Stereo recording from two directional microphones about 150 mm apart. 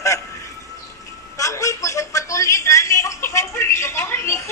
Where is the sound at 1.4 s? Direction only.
20° left (ahead or behind).